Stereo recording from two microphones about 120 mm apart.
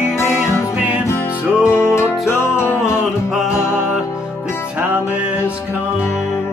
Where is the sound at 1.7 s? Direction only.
25° left (ahead or behind).